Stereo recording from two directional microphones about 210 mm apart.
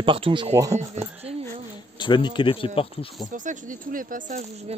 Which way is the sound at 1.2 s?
30° right (ahead or behind).